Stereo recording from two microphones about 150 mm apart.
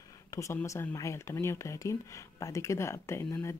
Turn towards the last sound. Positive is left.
turn(degrees=15)  # may be behind; listen again after turning